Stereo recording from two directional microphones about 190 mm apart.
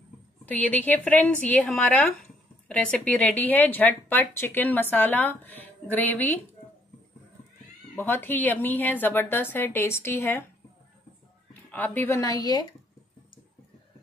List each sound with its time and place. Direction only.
0.5 s a woman's voice: 10° left (ahead or behind)
7.9 s a woman's voice: 10° left (ahead or behind)
11.7 s a woman's voice: 10° left (ahead or behind)